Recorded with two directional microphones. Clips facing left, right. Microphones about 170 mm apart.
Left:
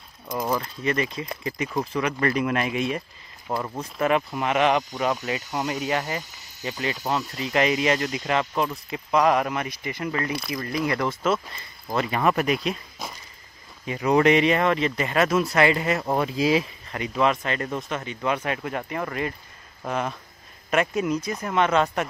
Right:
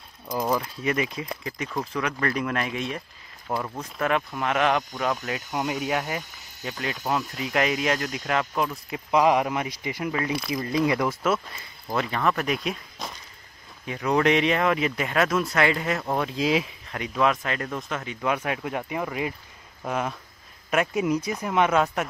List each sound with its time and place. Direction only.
0.4 s speech: 5° right (ahead or behind)
1.3 s speech: 5° left (ahead or behind)
9.1 s speech: 10° right (ahead or behind)
11.3 s speech: centre (ahead or behind)
12.2 s speech: 15° left (ahead or behind)
12.4 s speech: centre (ahead or behind)